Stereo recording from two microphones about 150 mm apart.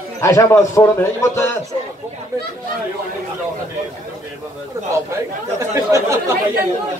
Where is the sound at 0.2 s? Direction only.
20° left (ahead or behind).